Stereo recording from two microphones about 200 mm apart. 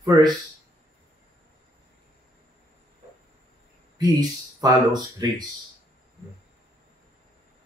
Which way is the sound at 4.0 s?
20° right (ahead or behind).